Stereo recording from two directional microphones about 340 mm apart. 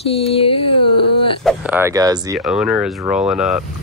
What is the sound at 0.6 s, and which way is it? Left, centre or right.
Speech, left.